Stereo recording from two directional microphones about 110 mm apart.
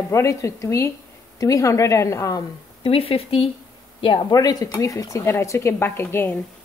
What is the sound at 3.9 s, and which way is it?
Speech, 50° left (ahead or behind).